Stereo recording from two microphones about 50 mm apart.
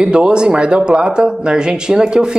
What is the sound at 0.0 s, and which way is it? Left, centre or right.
A woman's voice, centre.